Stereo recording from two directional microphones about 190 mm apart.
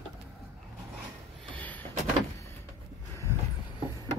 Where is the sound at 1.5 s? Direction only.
10° left (ahead or behind).